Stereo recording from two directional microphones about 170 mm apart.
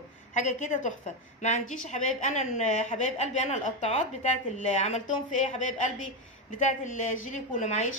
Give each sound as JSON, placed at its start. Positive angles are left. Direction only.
{"t": 0.3, "sound": "a woman's voice", "side_deg": 45}